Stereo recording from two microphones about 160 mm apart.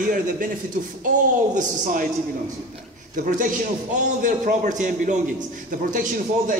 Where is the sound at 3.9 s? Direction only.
55° right (ahead or behind).